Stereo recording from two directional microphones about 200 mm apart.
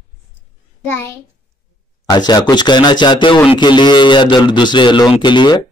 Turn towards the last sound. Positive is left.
turn(degrees=20)  # may be behind; listen again after turning